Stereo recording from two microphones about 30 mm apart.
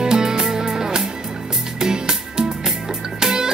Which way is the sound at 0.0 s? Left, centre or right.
Right.